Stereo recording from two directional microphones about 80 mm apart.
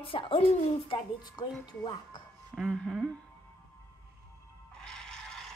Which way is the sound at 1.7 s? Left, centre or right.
Left.